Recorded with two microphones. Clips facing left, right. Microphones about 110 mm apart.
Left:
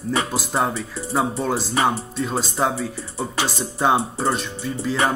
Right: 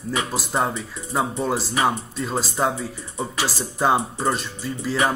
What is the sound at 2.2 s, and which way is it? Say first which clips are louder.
Music: left 1 dB; centre (ahead or behind).